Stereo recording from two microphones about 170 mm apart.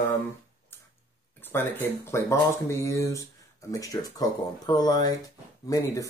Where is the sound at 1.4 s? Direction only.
10° left (ahead or behind).